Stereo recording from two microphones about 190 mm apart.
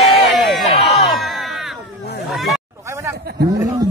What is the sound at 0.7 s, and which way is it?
Crowd, 30° left (ahead or behind).